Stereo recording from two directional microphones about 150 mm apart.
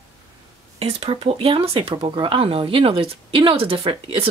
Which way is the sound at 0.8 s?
40° right (ahead or behind).